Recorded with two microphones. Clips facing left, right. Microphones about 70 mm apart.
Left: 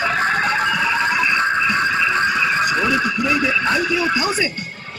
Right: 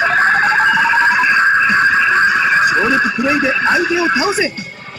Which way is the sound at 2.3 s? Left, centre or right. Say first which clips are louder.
Right 6 dB; right.